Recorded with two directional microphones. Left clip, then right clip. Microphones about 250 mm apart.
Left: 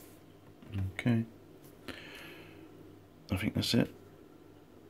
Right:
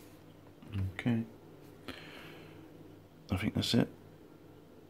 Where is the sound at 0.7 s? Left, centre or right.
Centre.